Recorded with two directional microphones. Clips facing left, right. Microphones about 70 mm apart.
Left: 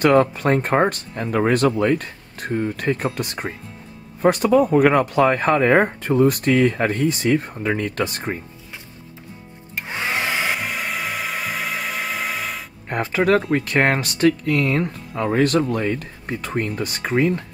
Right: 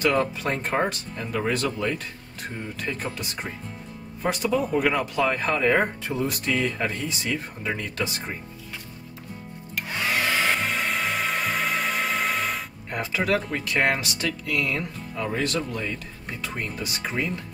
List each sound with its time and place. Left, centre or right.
0.0 s speech: left
9.8 s hair dryer: left; by 12.6 s centre
12.9 s speech: left